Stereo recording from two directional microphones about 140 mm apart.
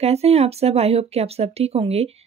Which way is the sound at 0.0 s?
50° right (ahead or behind).